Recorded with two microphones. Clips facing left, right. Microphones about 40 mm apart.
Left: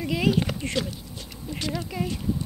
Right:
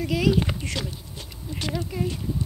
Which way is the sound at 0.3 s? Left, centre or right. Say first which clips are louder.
Right 1 dB; left.